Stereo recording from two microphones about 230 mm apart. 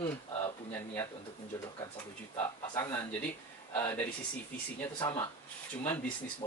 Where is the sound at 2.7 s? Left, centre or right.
Centre.